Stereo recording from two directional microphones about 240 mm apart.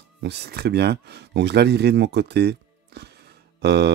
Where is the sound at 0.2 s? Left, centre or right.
Right.